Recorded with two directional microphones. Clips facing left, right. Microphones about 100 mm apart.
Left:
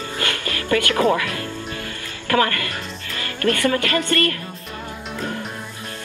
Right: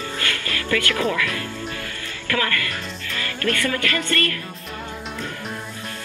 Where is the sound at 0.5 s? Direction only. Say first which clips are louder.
Left 3 dB; 35° left (ahead or behind).